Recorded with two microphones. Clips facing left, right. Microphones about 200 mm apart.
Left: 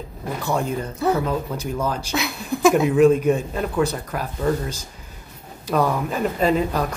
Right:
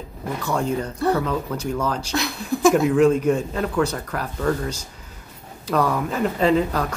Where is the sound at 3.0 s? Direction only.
15° left (ahead or behind).